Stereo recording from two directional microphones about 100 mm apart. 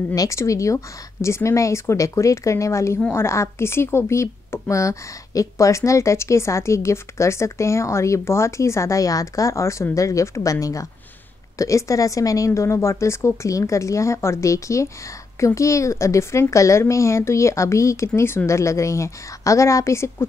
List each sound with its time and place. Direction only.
0.1 s a woman's voice: 35° left (ahead or behind)